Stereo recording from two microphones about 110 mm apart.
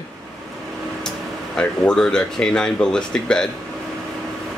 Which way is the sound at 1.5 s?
5° left (ahead or behind).